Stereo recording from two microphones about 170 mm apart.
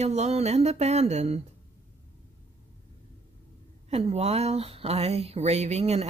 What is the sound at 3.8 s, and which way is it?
Speech, 40° right (ahead or behind).